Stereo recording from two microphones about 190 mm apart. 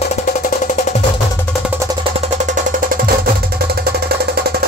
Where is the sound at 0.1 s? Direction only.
40° left (ahead or behind).